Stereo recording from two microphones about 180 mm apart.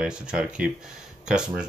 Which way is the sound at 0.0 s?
5° right (ahead or behind).